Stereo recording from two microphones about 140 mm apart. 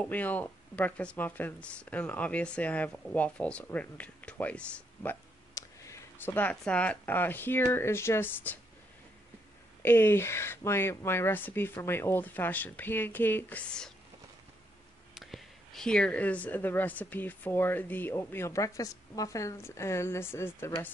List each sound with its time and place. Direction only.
0.0 s speech: 10° left (ahead or behind)
5.5 s speech: 20° left (ahead or behind)
9.8 s speech: 15° left (ahead or behind)
15.1 s speech: centre (ahead or behind); by 20.9 s 15° left (ahead or behind)